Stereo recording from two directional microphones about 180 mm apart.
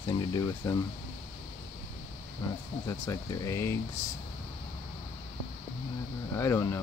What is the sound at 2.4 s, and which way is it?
Speech, 20° left (ahead or behind).